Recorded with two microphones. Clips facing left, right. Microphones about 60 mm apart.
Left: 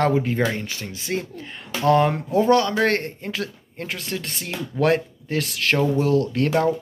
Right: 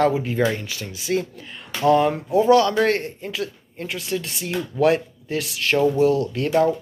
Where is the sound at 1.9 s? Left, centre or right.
Left.